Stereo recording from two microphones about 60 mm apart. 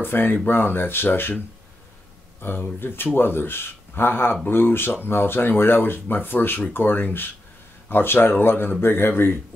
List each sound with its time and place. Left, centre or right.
0.0 s speech: left
2.8 s speech: left